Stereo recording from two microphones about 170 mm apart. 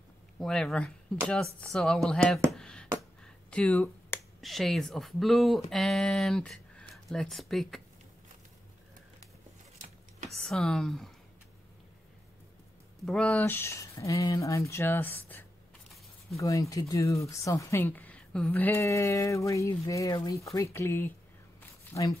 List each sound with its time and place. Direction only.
0.4 s speech: 5° left (ahead or behind)
2.5 s a sound: 5° left (ahead or behind)
4.4 s speech: centre (ahead or behind)
10.3 s speech: centre (ahead or behind)
13.0 s speech: 5° left (ahead or behind)